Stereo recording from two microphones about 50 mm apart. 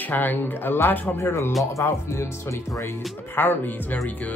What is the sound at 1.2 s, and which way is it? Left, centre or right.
Speech, left.